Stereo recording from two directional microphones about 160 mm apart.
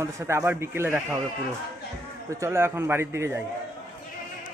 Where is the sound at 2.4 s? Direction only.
15° right (ahead or behind).